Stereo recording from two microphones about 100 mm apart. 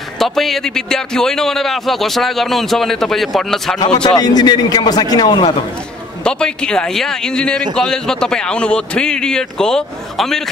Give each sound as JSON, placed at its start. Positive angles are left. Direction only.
{"t": 0.2, "sound": "a man's voice", "side_deg": 0}
{"t": 3.8, "sound": "a man's voice", "side_deg": 45}
{"t": 6.2, "sound": "a man's voice", "side_deg": 10}